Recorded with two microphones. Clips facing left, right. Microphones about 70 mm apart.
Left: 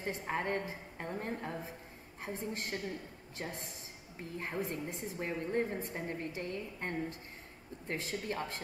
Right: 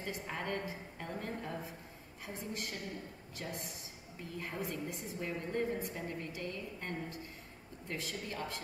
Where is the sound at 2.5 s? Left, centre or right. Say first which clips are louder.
Left 3 dB; left.